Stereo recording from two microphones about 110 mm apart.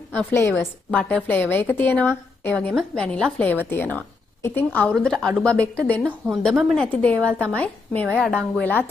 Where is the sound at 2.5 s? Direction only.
10° left (ahead or behind).